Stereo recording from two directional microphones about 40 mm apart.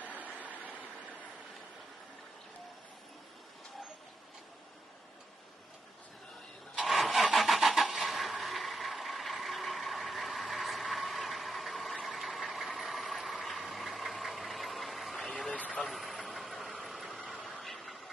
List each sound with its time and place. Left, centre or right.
0.0 s vehicle: right
6.9 s vehicle: centre
12.2 s engine: centre
13.5 s vehicle: centre
15.5 s vehicle: left
15.8 s vehicle: centre